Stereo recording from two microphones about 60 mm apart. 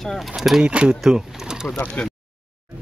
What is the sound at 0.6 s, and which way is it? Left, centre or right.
Speech, centre.